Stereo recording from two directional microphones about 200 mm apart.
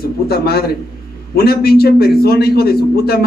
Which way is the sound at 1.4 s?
50° left (ahead or behind).